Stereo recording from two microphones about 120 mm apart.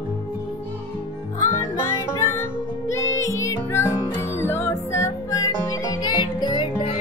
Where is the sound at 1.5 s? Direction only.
20° left (ahead or behind); by 6.6 s 35° left (ahead or behind).